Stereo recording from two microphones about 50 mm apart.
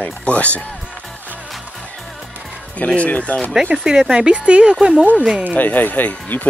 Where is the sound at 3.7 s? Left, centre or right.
Centre.